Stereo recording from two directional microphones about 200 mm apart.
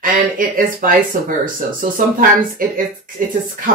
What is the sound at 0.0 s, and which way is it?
A woman's voice, 45° right (ahead or behind).